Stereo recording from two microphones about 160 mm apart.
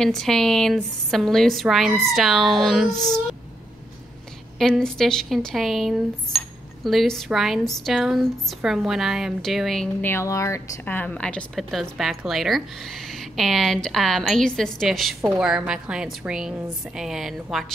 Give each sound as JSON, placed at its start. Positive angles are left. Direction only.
{"t": 0.0, "sound": "a woman's voice", "side_deg": 5}
{"t": 4.6, "sound": "a woman's voice", "side_deg": 5}
{"t": 10.0, "sound": "a woman's voice", "side_deg": 15}